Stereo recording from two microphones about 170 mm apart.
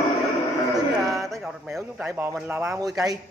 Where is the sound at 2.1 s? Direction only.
15° right (ahead or behind).